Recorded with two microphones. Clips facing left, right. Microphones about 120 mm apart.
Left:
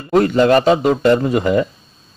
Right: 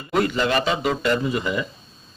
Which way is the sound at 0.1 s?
40° left (ahead or behind).